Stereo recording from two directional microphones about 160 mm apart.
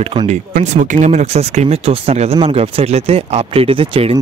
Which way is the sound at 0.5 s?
50° right (ahead or behind).